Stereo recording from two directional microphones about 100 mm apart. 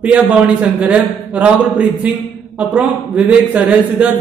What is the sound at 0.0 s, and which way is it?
A man's voice, 15° right (ahead or behind).